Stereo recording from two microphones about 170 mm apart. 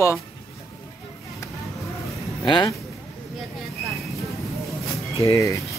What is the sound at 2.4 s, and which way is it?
Speech, 25° left (ahead or behind).